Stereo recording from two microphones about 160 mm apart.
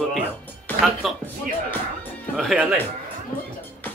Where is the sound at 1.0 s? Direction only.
Centre (ahead or behind).